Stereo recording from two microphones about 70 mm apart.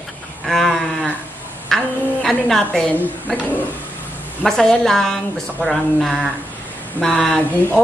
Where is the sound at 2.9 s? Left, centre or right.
Left.